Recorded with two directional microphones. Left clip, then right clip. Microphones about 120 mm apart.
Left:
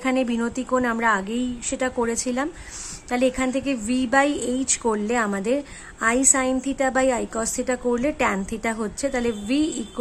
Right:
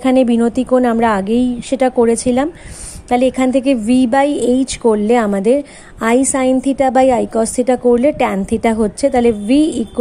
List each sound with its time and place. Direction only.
0.0 s speech: 45° right (ahead or behind)